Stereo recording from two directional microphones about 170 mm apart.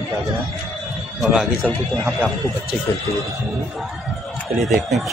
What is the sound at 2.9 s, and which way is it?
Speech, 15° left (ahead or behind).